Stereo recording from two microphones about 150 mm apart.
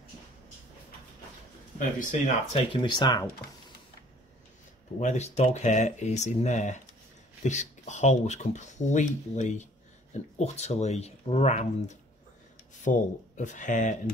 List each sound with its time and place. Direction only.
1.8 s speech: 60° left (ahead or behind)
2.5 s speech: 35° left (ahead or behind)
5.0 s speech: 50° left (ahead or behind)
12.9 s speech: 65° left (ahead or behind)
13.4 s speech: 55° left (ahead or behind)